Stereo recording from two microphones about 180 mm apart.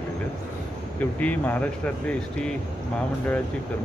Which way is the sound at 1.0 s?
10° left (ahead or behind).